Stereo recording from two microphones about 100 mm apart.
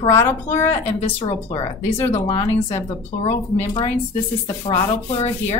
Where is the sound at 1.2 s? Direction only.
80° left.